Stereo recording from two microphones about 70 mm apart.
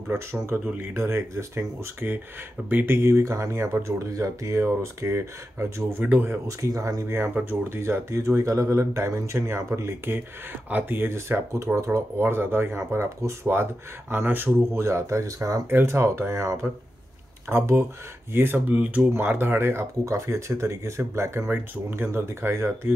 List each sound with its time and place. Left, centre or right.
0.1 s speech: right
6.4 s speech: right
7.4 s speech: right
10.7 s speech: right
14.8 s speech: right
15.7 s speech: right